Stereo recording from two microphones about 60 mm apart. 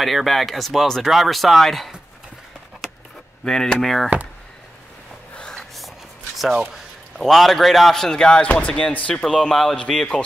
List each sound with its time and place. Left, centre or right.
0.0 s speech: centre
3.4 s speech: centre
5.3 s gasp: centre
6.3 s a sound: centre
7.2 s speech: centre